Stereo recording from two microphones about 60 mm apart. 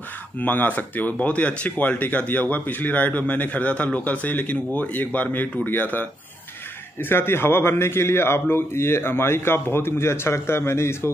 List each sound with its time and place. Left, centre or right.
0.4 s a man's voice: left